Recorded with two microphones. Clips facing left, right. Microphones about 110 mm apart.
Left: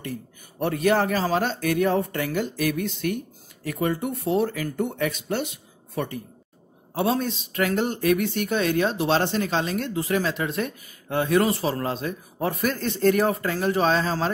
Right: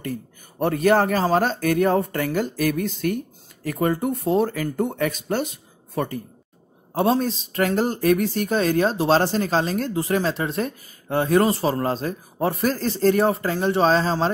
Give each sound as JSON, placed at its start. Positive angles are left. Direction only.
{"t": 0.6, "sound": "speech", "side_deg": -45}